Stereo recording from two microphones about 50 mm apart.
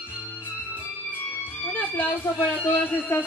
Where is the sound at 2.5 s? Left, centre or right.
Left.